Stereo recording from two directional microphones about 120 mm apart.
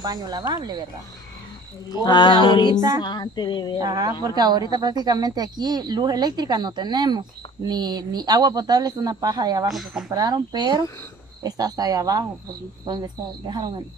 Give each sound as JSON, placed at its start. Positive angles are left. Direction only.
{"t": 0.0, "sound": "speech", "side_deg": -35}
{"t": 2.0, "sound": "music", "side_deg": 40}
{"t": 3.8, "sound": "speech", "side_deg": -30}
{"t": 9.7, "sound": "speech", "side_deg": 0}
{"t": 10.1, "sound": "speech", "side_deg": -35}